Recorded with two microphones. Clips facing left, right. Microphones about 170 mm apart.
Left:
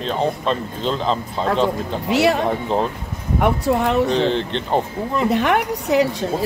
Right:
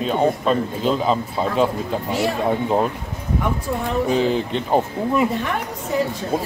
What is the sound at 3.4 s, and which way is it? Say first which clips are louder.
Speech: left 7 dB; 75° left (ahead or behind).